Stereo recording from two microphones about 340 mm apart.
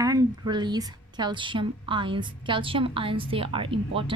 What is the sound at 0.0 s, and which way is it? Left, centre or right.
A woman's voice, centre.